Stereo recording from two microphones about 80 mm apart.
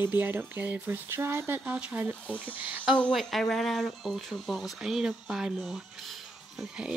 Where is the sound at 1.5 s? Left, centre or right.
Centre.